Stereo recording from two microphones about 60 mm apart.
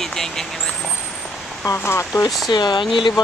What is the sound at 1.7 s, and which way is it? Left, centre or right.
Speech, left.